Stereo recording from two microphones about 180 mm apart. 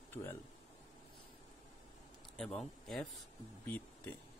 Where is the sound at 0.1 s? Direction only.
10° left (ahead or behind).